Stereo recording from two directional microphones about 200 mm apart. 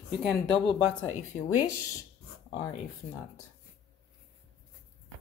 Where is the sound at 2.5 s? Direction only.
15° left (ahead or behind).